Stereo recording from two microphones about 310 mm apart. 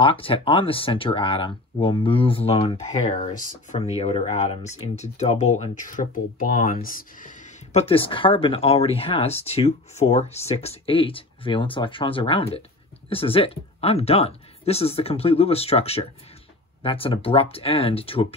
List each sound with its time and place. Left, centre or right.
0.0 s speech: centre